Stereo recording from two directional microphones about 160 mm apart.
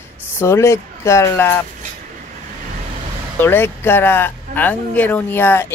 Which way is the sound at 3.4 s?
15° left (ahead or behind).